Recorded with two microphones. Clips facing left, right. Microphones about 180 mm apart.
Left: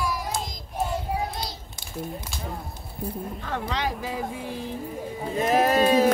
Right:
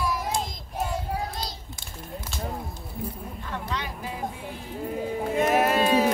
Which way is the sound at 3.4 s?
90° left.